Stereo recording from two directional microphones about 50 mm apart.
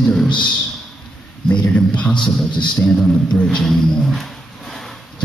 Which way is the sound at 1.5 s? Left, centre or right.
Left.